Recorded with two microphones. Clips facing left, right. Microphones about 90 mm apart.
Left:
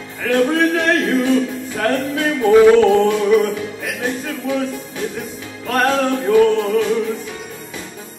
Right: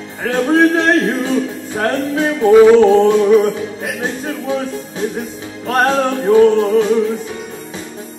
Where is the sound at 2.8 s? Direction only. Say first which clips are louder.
Right 4 dB; 25° right (ahead or behind).